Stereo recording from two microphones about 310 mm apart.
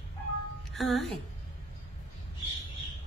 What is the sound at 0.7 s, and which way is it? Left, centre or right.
Speech, centre.